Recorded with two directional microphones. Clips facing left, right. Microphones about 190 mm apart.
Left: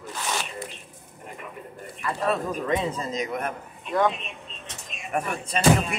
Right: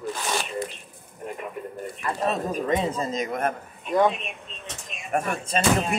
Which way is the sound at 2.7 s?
35° right (ahead or behind).